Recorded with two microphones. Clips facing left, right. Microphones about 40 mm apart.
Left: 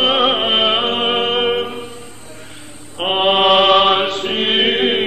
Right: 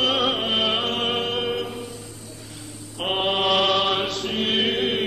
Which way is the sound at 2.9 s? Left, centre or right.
Left.